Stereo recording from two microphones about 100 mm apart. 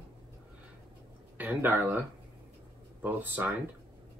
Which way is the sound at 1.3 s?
20° right (ahead or behind).